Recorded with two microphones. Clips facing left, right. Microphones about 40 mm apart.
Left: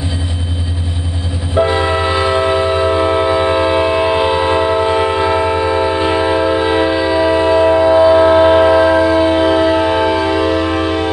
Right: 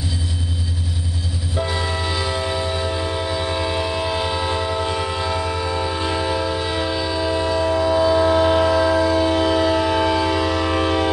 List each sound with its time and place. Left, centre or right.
1.5 s train: left; by 11.1 s centre